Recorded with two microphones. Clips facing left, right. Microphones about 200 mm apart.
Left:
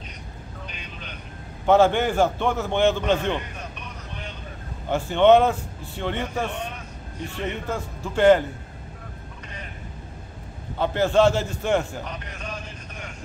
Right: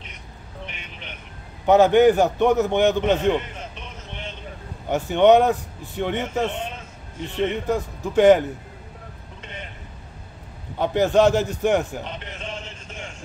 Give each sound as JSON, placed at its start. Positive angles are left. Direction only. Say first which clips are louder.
{"t": 1.7, "sound": "a man's voice", "louder": "right 4 dB", "side_deg": -15}
{"t": 10.8, "sound": "a man's voice", "louder": "right 2 dB", "side_deg": -15}